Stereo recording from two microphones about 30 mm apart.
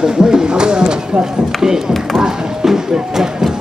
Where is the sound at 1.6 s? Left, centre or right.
Centre.